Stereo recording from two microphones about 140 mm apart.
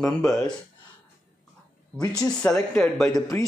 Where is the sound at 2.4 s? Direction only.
15° left (ahead or behind).